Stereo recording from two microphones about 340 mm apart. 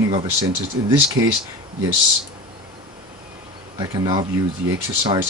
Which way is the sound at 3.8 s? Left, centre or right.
Centre.